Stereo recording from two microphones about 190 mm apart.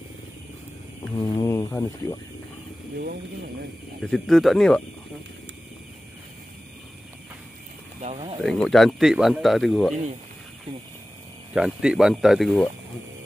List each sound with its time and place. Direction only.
1.1 s speech: 20° left (ahead or behind)
4.0 s speech: centre (ahead or behind)
8.4 s speech: centre (ahead or behind)
11.5 s speech: 5° right (ahead or behind)